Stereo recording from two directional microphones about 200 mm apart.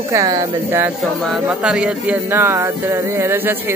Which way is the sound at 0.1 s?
15° right (ahead or behind).